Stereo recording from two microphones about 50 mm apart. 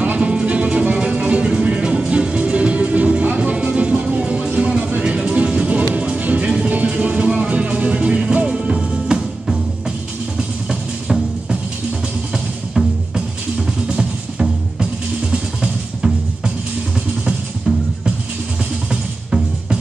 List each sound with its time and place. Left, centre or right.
0.0 s music: right
12.7 s music: centre
17.7 s music: centre
18.9 s music: centre